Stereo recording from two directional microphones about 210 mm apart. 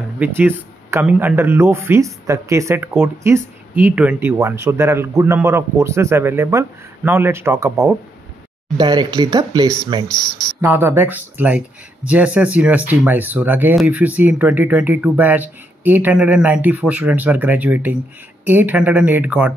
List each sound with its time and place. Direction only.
0.2 s speech: 10° right (ahead or behind)
10.6 s speech: 10° right (ahead or behind)